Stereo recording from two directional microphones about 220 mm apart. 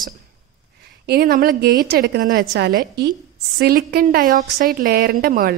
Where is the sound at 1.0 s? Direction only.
45° right (ahead or behind).